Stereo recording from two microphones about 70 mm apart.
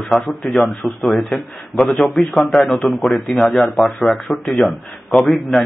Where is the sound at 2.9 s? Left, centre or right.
Centre.